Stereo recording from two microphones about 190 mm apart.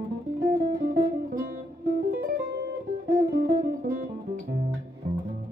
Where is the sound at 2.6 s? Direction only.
60° right (ahead or behind).